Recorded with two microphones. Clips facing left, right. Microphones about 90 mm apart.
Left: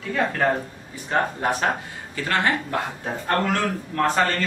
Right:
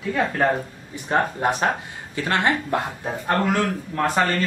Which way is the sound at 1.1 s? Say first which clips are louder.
Right 2 dB; 20° right (ahead or behind).